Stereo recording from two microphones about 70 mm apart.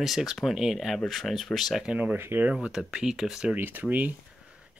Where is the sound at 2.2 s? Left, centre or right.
Right.